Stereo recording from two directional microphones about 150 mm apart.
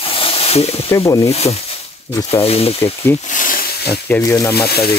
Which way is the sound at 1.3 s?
45° left (ahead or behind).